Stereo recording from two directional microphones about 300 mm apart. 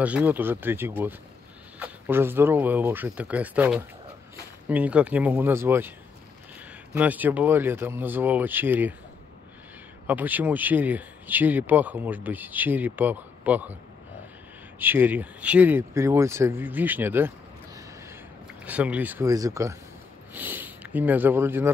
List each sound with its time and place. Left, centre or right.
0.0 s speech: centre
10.0 s speech: centre
14.8 s speech: centre
18.6 s speech: centre